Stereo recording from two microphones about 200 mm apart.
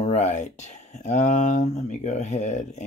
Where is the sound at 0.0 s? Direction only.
35° left (ahead or behind).